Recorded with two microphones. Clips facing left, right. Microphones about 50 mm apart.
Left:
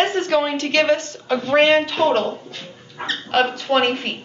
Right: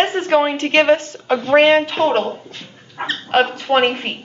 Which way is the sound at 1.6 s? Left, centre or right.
Centre.